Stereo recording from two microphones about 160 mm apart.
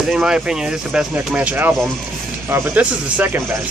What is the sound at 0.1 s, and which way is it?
Speech, 5° right (ahead or behind).